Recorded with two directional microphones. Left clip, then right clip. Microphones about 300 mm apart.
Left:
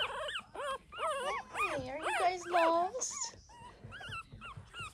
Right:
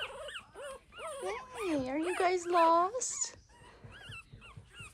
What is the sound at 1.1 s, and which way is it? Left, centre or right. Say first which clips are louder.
Dog: left 3 dB; centre.